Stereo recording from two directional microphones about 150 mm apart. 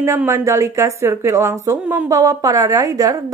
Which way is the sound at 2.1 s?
25° right (ahead or behind).